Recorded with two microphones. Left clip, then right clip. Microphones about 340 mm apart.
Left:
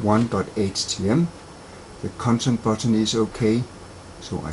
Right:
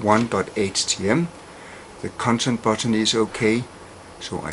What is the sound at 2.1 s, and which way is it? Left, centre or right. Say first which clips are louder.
Speech: right 2 dB; centre.